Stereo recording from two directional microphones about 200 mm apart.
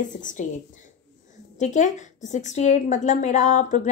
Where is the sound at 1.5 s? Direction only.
35° left (ahead or behind).